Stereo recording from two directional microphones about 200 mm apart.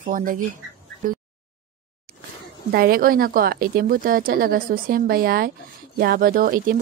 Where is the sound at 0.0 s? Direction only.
40° right (ahead or behind).